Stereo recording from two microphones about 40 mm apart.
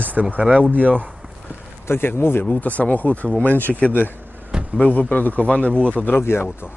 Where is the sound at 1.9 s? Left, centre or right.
Left.